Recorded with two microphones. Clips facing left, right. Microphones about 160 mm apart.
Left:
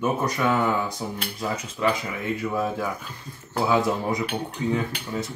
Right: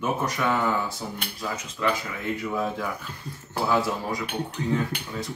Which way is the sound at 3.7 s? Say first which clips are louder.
Left 3 dB; 20° left (ahead or behind).